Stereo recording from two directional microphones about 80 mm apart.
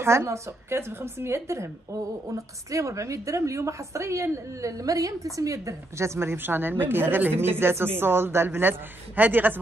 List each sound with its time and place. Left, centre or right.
0.0 s a woman's voice: right